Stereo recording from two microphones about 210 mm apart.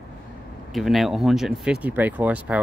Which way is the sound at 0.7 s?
Centre (ahead or behind).